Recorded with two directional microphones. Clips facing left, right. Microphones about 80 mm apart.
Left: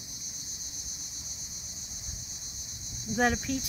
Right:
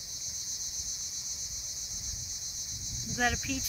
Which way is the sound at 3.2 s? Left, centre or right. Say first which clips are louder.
Left 4 dB; left.